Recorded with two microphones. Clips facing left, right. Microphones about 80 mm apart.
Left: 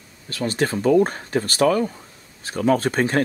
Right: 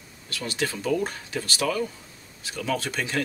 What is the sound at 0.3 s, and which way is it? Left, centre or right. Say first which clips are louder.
Speech: left 7 dB; left.